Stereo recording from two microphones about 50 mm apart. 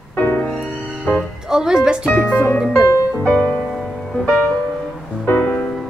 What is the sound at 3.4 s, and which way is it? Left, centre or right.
Music, left.